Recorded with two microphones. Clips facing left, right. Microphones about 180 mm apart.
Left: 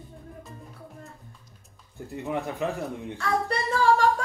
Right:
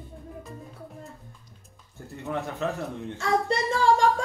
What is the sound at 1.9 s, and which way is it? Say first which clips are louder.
Speech: left 2 dB; 15° left (ahead or behind).